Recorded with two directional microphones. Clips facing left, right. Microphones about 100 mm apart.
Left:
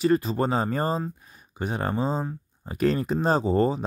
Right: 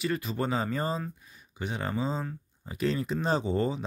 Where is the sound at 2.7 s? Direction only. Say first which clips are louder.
Left 6 dB; 50° left (ahead or behind).